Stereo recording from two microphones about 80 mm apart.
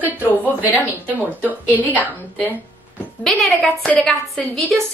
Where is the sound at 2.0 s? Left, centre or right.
Left.